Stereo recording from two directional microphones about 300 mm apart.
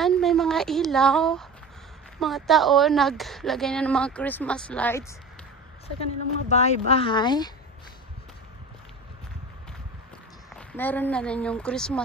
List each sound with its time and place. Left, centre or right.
0.0 s a woman's voice: centre
6.5 s speech: left
10.5 s a woman's voice: centre